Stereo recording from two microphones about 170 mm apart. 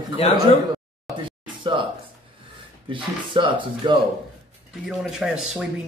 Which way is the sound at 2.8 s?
30° right (ahead or behind).